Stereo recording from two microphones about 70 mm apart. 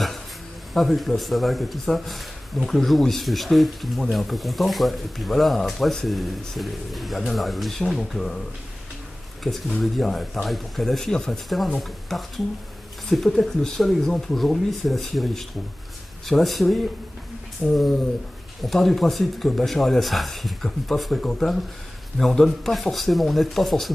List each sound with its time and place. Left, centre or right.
0.7 s speech: centre
9.5 s speech: centre